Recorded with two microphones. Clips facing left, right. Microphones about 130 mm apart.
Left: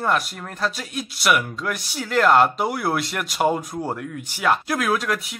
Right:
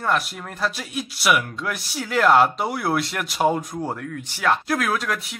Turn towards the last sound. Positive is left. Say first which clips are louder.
# left 2 dB
turn(degrees=0)  # may be behind; listen again after turning